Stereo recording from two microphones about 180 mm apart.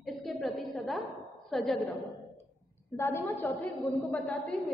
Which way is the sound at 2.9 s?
15° left (ahead or behind).